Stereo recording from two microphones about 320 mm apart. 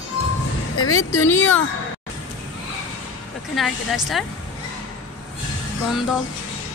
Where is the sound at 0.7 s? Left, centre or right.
Left.